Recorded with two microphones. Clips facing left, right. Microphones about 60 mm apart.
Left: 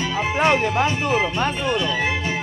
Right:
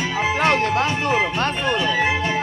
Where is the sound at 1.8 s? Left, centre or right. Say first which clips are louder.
Right 3 dB; right.